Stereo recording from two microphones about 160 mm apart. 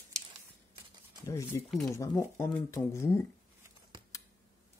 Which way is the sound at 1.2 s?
20° left (ahead or behind).